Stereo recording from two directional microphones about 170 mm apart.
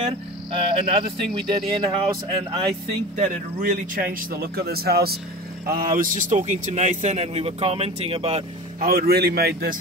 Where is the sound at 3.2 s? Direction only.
50° right (ahead or behind).